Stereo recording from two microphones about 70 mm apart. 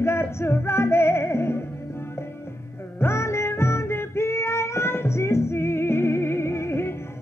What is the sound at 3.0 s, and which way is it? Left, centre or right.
Music, left.